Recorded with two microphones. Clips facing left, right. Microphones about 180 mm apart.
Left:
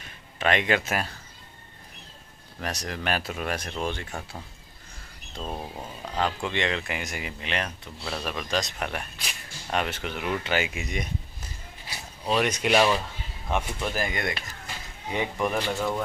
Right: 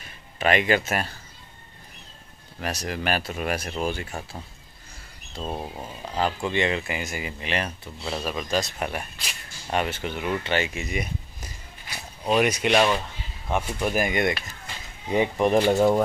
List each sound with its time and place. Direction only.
0.4 s speech: 5° right (ahead or behind)
2.6 s speech: 5° right (ahead or behind)
5.4 s speech: 10° right (ahead or behind)
12.6 s speech: 5° left (ahead or behind)
13.7 s speech: 15° right (ahead or behind)
15.7 s speech: 35° right (ahead or behind)